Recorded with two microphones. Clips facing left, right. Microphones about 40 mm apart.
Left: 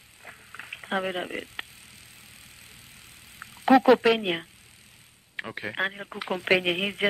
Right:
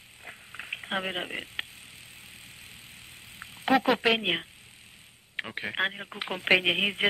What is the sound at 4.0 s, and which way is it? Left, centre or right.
Speech, right.